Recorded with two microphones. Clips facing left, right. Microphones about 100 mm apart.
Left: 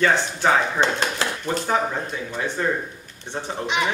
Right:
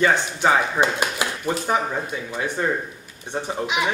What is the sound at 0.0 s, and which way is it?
Speech, 10° right (ahead or behind).